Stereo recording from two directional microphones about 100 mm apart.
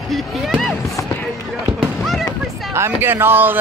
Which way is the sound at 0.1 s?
Centre (ahead or behind).